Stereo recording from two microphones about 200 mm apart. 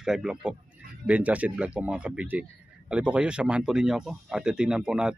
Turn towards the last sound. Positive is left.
turn(degrees=-5)  # may be behind; listen again after turning